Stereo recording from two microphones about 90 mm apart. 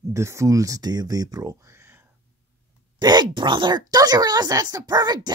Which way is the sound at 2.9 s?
50° right (ahead or behind).